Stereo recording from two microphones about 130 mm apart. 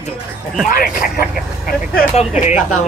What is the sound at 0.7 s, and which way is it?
Speech, 90° left.